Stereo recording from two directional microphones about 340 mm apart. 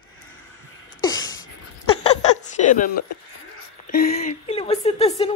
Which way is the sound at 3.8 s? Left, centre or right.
Left.